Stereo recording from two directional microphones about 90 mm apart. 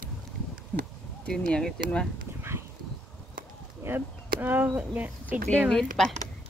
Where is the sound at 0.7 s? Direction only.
15° left (ahead or behind).